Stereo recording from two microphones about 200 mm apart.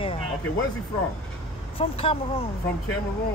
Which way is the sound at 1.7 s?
25° left (ahead or behind).